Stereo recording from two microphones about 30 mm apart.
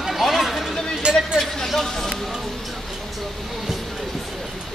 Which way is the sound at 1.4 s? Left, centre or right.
Centre.